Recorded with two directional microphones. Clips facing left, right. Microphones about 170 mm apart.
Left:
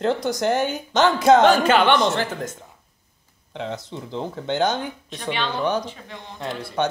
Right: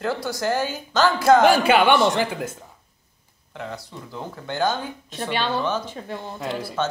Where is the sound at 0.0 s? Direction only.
20° left (ahead or behind).